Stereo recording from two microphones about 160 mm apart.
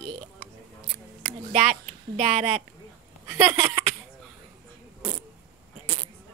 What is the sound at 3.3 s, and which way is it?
Speech, 20° right (ahead or behind).